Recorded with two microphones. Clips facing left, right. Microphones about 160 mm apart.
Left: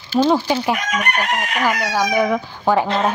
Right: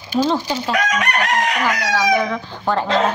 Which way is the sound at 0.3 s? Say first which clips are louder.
Left 3 dB; 15° left (ahead or behind).